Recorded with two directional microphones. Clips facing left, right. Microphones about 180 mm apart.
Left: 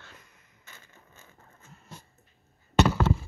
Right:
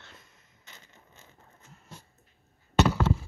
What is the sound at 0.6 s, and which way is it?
Crushing, 20° right (ahead or behind).